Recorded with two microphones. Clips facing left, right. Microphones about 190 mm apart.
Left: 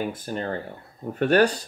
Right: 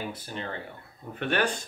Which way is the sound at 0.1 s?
45° left (ahead or behind).